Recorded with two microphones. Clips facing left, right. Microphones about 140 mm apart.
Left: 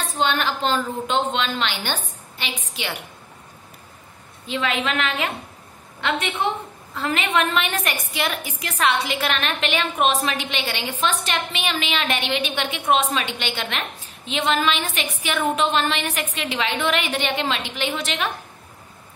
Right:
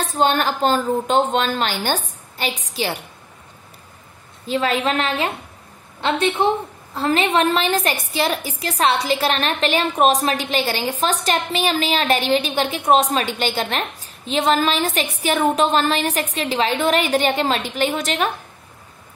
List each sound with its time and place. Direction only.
0.0 s a woman's voice: 40° right (ahead or behind)
4.5 s a woman's voice: 40° right (ahead or behind)